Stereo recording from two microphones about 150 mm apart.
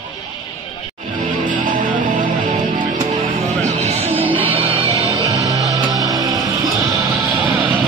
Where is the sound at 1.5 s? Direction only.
60° right (ahead or behind).